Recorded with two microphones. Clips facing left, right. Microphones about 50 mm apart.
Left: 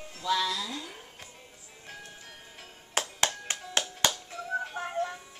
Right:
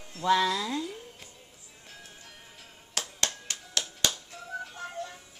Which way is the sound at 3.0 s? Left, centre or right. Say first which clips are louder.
Left 4 dB; left.